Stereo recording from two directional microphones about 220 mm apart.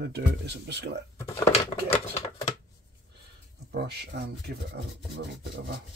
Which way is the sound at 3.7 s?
50° right (ahead or behind).